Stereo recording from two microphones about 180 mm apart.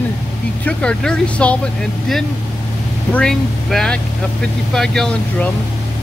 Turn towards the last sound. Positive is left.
turn(degrees=5)  # may be behind; listen again after turning